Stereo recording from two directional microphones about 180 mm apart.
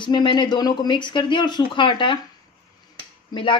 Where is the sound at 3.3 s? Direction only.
30° left (ahead or behind).